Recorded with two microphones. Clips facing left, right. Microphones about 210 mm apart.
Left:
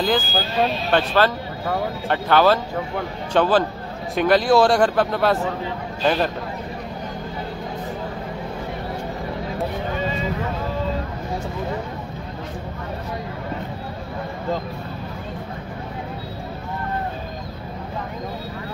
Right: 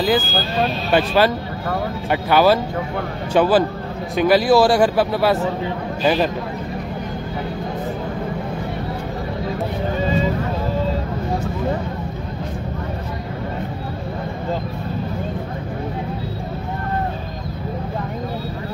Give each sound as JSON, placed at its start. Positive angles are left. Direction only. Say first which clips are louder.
{"t": 0.9, "sound": "a man's voice", "louder": "right 3 dB", "side_deg": -10}